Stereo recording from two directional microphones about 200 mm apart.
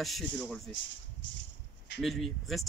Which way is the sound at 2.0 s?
Centre (ahead or behind).